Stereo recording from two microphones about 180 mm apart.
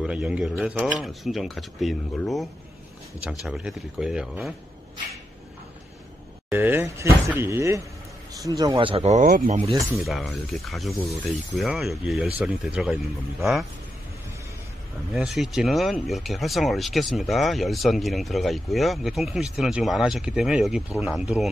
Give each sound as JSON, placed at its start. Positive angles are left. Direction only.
{"t": 0.0, "sound": "speech", "side_deg": -5}
{"t": 6.5, "sound": "speech", "side_deg": -10}
{"t": 9.8, "sound": "speech", "side_deg": 0}
{"t": 15.1, "sound": "speech", "side_deg": 0}